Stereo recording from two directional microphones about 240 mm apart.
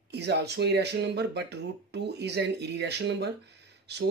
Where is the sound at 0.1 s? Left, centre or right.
Right.